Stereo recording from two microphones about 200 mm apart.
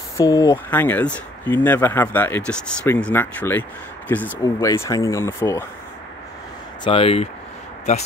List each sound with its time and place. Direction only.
0.2 s speech: 15° left (ahead or behind)
6.8 s speech: 25° left (ahead or behind)